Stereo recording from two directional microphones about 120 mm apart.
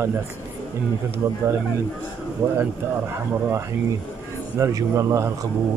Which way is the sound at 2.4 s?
20° right (ahead or behind).